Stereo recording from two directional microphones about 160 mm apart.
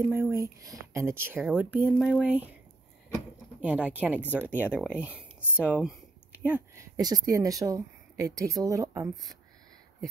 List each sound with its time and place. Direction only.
0.0 s speech: 15° right (ahead or behind)
3.6 s speech: 10° right (ahead or behind)
7.0 s a woman's voice: 20° right (ahead or behind)